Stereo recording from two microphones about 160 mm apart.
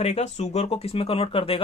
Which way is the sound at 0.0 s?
45° left (ahead or behind).